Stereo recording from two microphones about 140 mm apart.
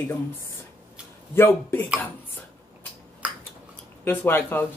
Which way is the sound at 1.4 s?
15° left (ahead or behind).